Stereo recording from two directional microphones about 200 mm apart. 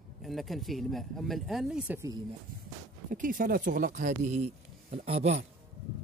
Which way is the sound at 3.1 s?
45° right (ahead or behind).